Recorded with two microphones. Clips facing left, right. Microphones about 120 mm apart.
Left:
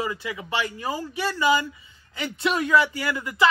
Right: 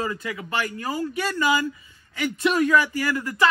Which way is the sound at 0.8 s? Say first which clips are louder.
Right 2 dB; 25° left (ahead or behind).